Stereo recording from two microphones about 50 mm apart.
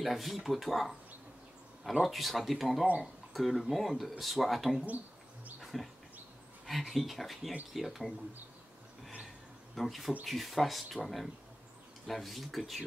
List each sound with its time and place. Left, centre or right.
0.0 s speech: centre
2.0 s speech: centre
5.6 s a sound: centre
6.6 s speech: centre
9.8 s speech: centre